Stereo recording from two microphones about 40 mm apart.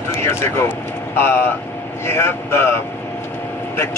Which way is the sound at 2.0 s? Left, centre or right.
Left.